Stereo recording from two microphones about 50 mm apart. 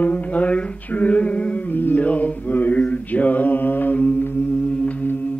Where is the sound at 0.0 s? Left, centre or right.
Left.